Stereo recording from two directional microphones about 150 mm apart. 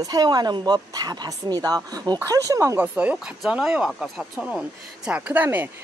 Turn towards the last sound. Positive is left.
turn(degrees=-10)  # may be behind; listen again after turning